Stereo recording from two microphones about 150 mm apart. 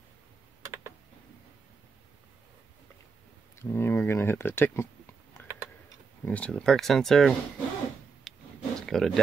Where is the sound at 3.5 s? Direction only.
15° left (ahead or behind).